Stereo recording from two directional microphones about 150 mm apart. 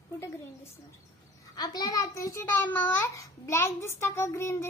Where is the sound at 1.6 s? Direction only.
25° left (ahead or behind).